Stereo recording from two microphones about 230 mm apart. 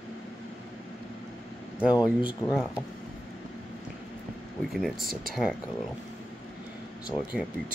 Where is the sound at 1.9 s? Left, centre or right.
Centre.